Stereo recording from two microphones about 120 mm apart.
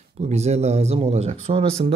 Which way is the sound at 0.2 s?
65° right (ahead or behind).